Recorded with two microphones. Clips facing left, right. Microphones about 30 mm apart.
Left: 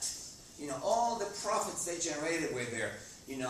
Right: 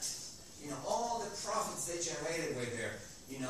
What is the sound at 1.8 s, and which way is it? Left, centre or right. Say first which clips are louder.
Speech: left 2 dB; left.